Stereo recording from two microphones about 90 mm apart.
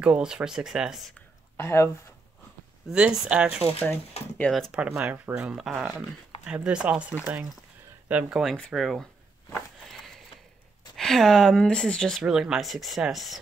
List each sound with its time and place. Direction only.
0.0 s speech: 10° right (ahead or behind)
1.6 s speech: 30° left (ahead or behind)
2.9 s speech: 5° right (ahead or behind)
3.8 s speech: 15° left (ahead or behind)
4.5 s speech: 5° left (ahead or behind)
4.7 s speech: 10° right (ahead or behind)
8.7 s speech: centre (ahead or behind)
11.0 s speech: 5° left (ahead or behind)
12.2 s speech: 5° right (ahead or behind)